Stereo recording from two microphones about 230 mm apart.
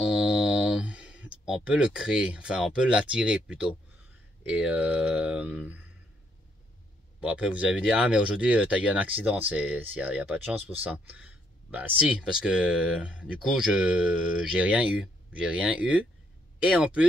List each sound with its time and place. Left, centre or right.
0.0 s speech: centre
7.2 s speech: centre